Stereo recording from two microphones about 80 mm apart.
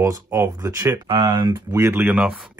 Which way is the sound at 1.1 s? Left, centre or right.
Right.